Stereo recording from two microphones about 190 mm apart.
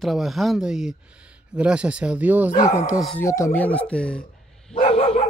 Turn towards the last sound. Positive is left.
turn(degrees=30)  # may be behind; listen again after turning